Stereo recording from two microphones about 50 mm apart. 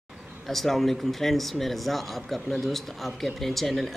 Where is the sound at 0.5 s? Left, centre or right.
Centre.